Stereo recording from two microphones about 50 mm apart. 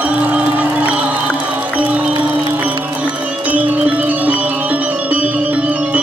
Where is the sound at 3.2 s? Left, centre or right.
Right.